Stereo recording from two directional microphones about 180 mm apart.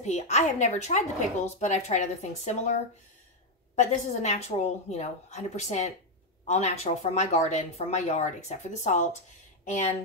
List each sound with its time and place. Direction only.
0.0 s speech: 40° left (ahead or behind)